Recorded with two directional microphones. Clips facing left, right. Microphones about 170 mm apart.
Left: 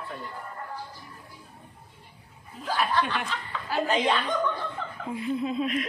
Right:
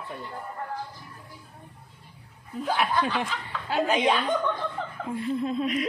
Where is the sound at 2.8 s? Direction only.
10° right (ahead or behind).